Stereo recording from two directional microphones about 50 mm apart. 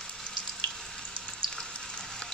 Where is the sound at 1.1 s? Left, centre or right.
Centre.